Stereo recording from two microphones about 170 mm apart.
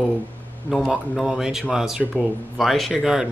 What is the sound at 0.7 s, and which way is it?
Speech, centre (ahead or behind).